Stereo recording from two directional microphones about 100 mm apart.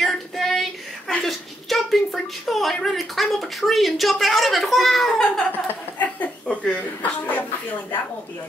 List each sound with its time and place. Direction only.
0.0 s child singing: centre (ahead or behind)
1.2 s speech: centre (ahead or behind)
5.5 s a woman's voice: 15° left (ahead or behind)